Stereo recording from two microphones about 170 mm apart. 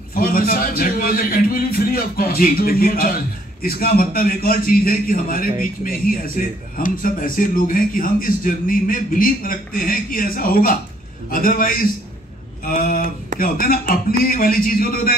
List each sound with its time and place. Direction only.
0.1 s a man's voice: 60° left (ahead or behind)